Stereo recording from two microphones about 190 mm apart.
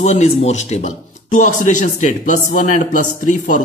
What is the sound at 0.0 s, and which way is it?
Speech, 35° left (ahead or behind).